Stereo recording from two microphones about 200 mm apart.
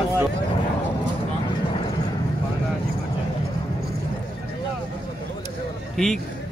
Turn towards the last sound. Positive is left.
turn(degrees=5)  # may be behind; listen again after turning